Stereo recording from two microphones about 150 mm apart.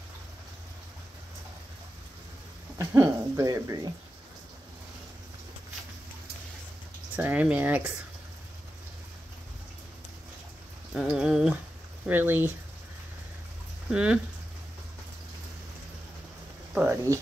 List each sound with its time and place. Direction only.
2.8 s speech: 20° right (ahead or behind)
7.2 s speech: 10° right (ahead or behind)
10.9 s a sound: 5° right (ahead or behind)
12.1 s speech: 15° right (ahead or behind)
13.8 s speech: 5° right (ahead or behind)
16.7 s speech: 15° right (ahead or behind)